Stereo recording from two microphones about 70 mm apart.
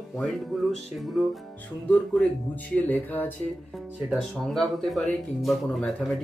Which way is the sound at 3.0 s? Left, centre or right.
Left.